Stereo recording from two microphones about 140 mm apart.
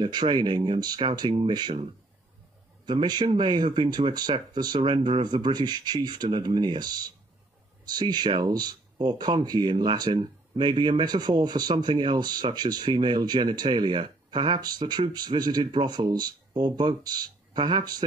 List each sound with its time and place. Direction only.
0.0 s speech: 30° right (ahead or behind)